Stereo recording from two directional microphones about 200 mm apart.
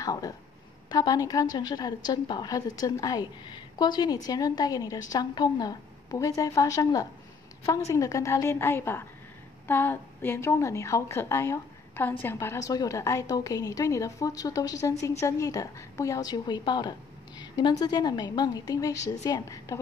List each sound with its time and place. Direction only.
0.0 s a woman's voice: 20° left (ahead or behind)